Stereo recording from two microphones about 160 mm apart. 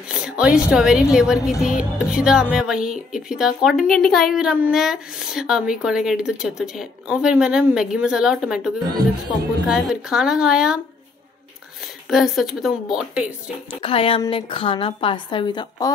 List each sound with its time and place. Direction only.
0.1 s a woman's voice: 5° right (ahead or behind)
12.1 s a woman's voice: centre (ahead or behind)
13.8 s a woman's voice: 35° left (ahead or behind)